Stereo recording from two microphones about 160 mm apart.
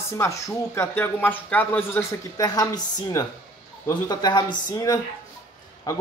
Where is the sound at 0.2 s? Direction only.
15° left (ahead or behind).